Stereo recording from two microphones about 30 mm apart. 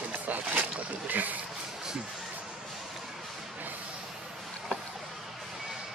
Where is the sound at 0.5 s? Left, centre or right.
Right.